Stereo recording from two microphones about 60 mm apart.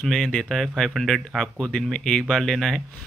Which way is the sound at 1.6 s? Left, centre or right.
Centre.